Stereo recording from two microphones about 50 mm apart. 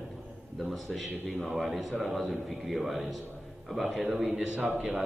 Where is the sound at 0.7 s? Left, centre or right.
Centre.